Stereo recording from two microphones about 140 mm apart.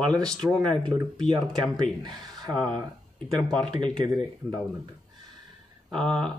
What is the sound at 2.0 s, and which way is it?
Speech, 30° right (ahead or behind).